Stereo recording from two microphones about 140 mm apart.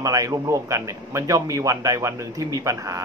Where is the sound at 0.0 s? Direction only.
25° right (ahead or behind).